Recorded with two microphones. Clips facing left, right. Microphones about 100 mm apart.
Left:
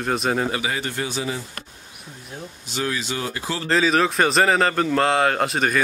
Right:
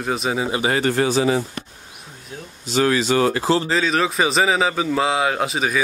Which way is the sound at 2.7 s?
90° right.